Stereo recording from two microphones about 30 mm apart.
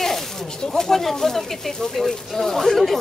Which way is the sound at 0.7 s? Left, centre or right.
Centre.